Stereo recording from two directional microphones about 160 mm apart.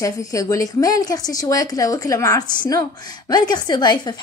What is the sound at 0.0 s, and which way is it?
A woman's voice, 20° left (ahead or behind).